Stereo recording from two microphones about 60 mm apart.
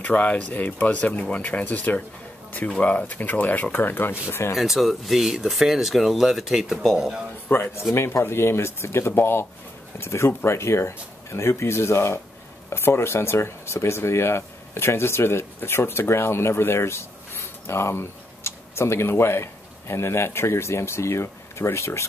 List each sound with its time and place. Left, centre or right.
0.0 s speech: left
4.6 s speech: centre
7.5 s speech: left
7.9 s speech: left